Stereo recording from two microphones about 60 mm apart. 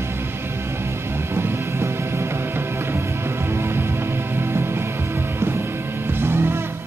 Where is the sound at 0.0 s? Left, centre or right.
Right.